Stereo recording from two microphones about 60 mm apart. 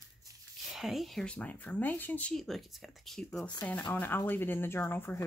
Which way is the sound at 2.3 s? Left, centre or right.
Centre.